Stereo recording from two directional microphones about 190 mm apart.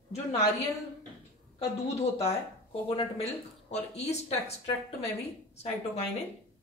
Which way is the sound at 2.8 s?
30° left (ahead or behind).